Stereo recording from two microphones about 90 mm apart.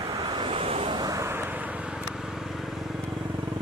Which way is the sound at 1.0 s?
35° right (ahead or behind).